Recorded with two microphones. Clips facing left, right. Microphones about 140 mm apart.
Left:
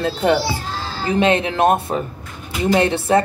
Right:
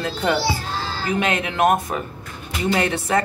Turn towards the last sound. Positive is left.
turn(degrees=25)  # may be behind; listen again after turning